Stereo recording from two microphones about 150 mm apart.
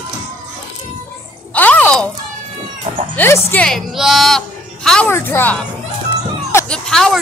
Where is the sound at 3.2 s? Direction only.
15° left (ahead or behind).